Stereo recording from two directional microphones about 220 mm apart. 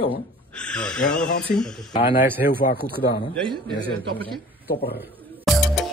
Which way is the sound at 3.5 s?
20° right (ahead or behind).